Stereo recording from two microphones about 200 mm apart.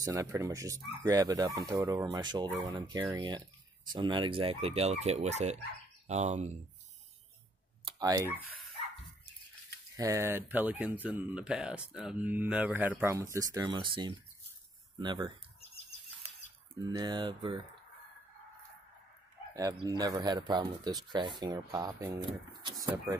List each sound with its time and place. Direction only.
0.0 s speech: 15° right (ahead or behind); by 6.5 s 35° right (ahead or behind)
7.8 s speech: 15° right (ahead or behind)
9.9 s speech: 15° right (ahead or behind)
16.9 s speech: 20° right (ahead or behind)
19.9 s speech: 20° right (ahead or behind)